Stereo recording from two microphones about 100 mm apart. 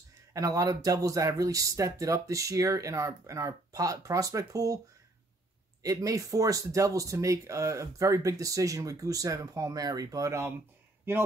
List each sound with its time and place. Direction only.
0.3 s speech: 35° right (ahead or behind)
5.8 s speech: 35° right (ahead or behind)